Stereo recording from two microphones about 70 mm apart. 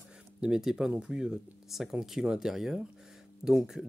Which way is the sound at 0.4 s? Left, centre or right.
Centre.